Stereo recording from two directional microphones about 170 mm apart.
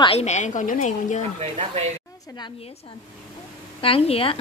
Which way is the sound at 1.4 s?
40° right (ahead or behind).